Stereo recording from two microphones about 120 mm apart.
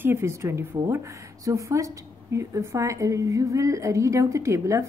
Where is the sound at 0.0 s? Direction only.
20° right (ahead or behind).